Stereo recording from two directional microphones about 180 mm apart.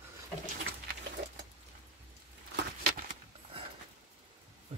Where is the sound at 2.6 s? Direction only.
60° right (ahead or behind).